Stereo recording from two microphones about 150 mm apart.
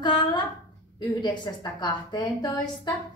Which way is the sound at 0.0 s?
30° left (ahead or behind).